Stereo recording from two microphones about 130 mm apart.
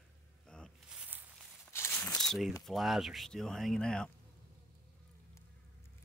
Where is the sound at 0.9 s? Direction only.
10° right (ahead or behind).